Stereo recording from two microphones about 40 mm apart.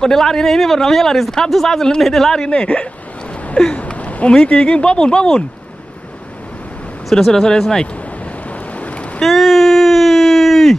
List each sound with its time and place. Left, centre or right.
0.0 s speech: centre
2.3 s speech: left
3.7 s a sound: left
4.3 s speech: left
7.1 s speech: centre
8.5 s boat: left
9.2 s a sound: centre